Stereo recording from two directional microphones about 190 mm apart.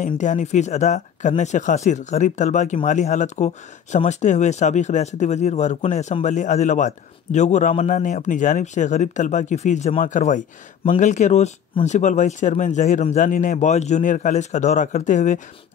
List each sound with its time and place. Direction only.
0.0 s speech: 40° left (ahead or behind)